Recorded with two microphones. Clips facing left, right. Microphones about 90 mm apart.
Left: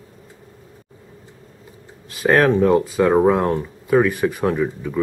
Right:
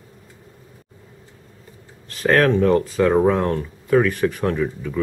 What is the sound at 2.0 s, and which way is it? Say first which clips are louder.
Speech: left 1 dB; 10° left (ahead or behind).